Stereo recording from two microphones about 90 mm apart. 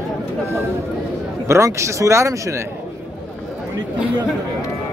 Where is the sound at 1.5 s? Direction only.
35° right (ahead or behind).